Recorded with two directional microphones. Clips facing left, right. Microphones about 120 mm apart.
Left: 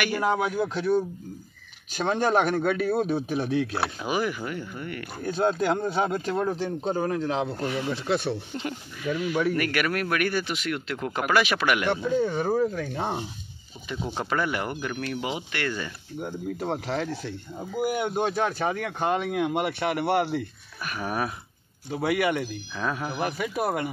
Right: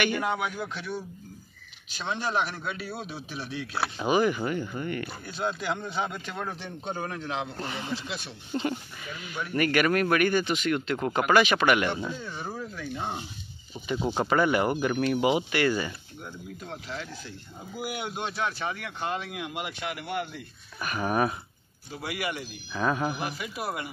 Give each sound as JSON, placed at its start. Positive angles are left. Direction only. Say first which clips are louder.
{"t": 0.3, "sound": "speech", "louder": "left 6 dB", "side_deg": 45}
{"t": 3.8, "sound": "speech", "louder": "right 3 dB", "side_deg": 0}
{"t": 5.2, "sound": "a man's voice", "louder": "left 11 dB", "side_deg": 45}
{"t": 7.9, "sound": "speech", "louder": "left 9 dB", "side_deg": 55}
{"t": 9.0, "sound": "speech", "louder": "left 12 dB", "side_deg": 70}
{"t": 9.6, "sound": "speech", "louder": "right 3 dB", "side_deg": 0}
{"t": 12.2, "sound": "speech", "louder": "left 13 dB", "side_deg": 60}
{"t": 14.0, "sound": "speech", "louder": "right 3 dB", "side_deg": -5}
{"t": 16.6, "sound": "speech", "louder": "left 9 dB", "side_deg": 80}
{"t": 20.8, "sound": "speech", "louder": "right 3 dB", "side_deg": 0}
{"t": 21.9, "sound": "speech", "louder": "left 9 dB", "side_deg": 55}
{"t": 22.8, "sound": "speech", "louder": "right 2 dB", "side_deg": 0}
{"t": 23.2, "sound": "speech", "louder": "left 6 dB", "side_deg": 50}